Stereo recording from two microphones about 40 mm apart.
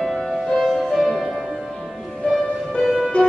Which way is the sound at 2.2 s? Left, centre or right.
Left.